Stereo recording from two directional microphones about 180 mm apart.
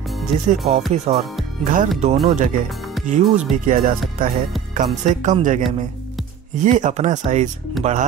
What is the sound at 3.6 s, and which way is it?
Speech, 55° right (ahead or behind).